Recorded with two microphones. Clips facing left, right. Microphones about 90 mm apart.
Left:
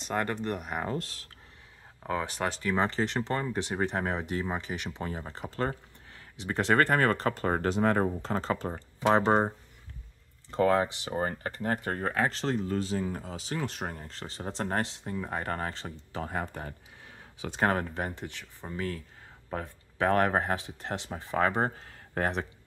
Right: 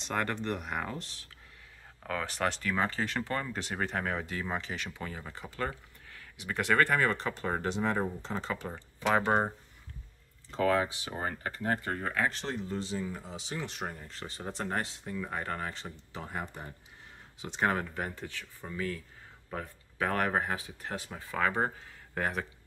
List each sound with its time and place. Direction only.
0.1 s speech: 15° left (ahead or behind)
0.4 s speech: 5° left (ahead or behind)
2.0 s speech: 20° left (ahead or behind)
4.9 s speech: 35° left (ahead or behind)
7.0 s speech: 50° left (ahead or behind)
8.5 s speech: 35° left (ahead or behind)
10.6 s speech: 40° left (ahead or behind)
11.5 s speech: 55° left (ahead or behind); by 12.5 s 40° left (ahead or behind)
12.6 s speech: 50° left (ahead or behind)
17.9 s speech: 25° left (ahead or behind)
18.7 s speech: 35° left (ahead or behind)